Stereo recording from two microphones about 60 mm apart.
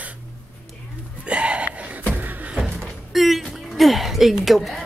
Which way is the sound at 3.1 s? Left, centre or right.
Centre.